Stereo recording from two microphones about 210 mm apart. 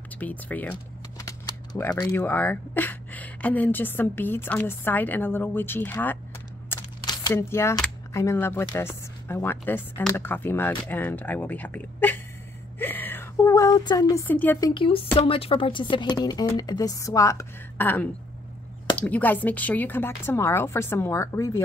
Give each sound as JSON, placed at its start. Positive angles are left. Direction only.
{"t": 0.2, "sound": "speech", "side_deg": 5}
{"t": 12.7, "sound": "a sound", "side_deg": 10}
{"t": 14.7, "sound": "speech", "side_deg": 25}